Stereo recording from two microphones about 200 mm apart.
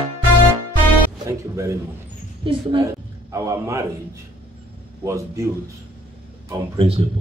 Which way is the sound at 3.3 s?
15° right (ahead or behind).